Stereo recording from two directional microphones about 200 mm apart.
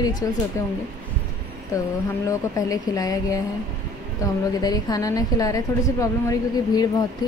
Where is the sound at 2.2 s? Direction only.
15° left (ahead or behind).